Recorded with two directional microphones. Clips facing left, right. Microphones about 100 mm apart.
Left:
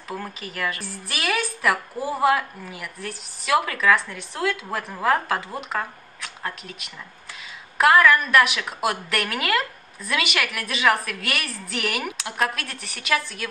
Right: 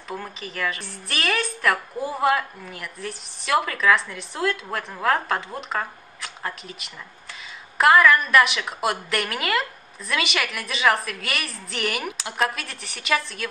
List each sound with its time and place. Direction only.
0.1 s a woman's voice: centre (ahead or behind)